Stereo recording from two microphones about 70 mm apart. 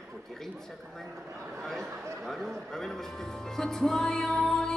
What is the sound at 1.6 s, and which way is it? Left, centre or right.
A man's voice, centre.